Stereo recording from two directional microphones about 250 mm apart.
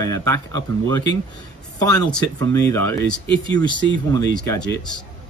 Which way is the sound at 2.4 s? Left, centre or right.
Centre.